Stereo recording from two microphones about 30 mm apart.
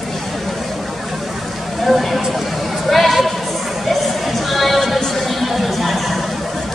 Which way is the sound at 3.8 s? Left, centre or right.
Centre.